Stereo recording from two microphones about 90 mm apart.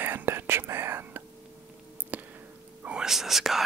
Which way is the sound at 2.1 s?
15° right (ahead or behind).